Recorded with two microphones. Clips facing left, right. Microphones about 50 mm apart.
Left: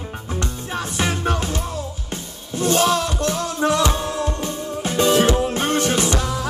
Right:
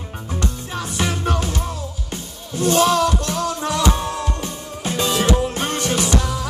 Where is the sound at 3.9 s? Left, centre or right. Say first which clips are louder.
Even; right.